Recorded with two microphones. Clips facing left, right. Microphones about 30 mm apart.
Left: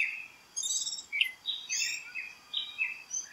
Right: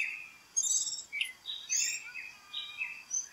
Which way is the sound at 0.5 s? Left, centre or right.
Left.